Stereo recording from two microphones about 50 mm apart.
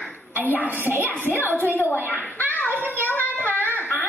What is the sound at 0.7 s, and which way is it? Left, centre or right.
Speech, right.